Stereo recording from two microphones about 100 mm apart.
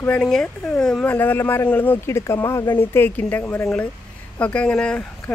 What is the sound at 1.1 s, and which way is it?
Speech, 20° left (ahead or behind).